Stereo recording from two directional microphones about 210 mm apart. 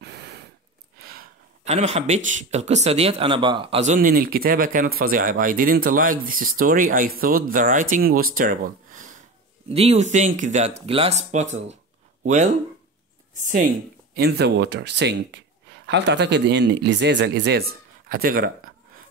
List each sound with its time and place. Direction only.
0.0 s gasp: 50° right (ahead or behind)
0.9 s a sound: 45° right (ahead or behind)
1.6 s speech: 30° right (ahead or behind)
14.1 s speech: 50° right (ahead or behind)